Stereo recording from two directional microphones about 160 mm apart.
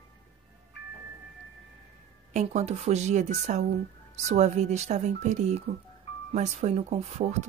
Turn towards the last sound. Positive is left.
turn(degrees=-45)  # may be behind; listen again after turning